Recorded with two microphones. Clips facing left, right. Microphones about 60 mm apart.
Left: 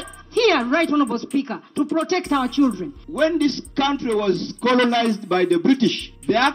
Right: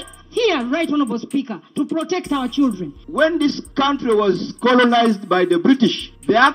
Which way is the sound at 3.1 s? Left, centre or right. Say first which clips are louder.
Right 3 dB; right.